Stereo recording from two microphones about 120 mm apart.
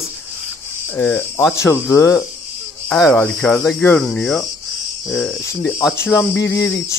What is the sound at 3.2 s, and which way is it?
Speech, 5° left (ahead or behind).